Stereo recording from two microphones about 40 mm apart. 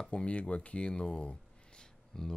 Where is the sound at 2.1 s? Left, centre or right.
Centre.